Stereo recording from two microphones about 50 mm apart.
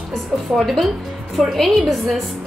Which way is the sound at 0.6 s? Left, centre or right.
Centre.